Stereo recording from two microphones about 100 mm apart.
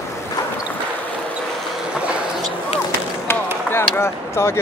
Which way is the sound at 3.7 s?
25° left (ahead or behind).